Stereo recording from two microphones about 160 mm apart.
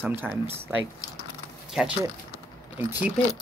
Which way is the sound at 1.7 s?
5° right (ahead or behind).